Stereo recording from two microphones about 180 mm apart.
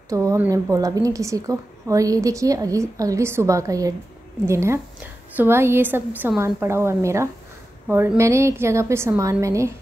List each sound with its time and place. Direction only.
0.1 s a woman's voice: 20° right (ahead or behind)